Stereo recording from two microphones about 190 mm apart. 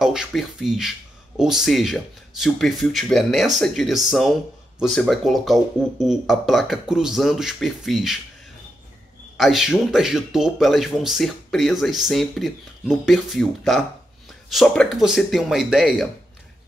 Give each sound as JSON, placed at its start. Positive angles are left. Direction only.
{"t": 0.0, "sound": "speech", "side_deg": -5}
{"t": 9.4, "sound": "speech", "side_deg": 0}